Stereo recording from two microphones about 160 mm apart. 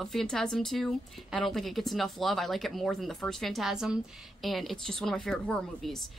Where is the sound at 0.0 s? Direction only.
5° left (ahead or behind).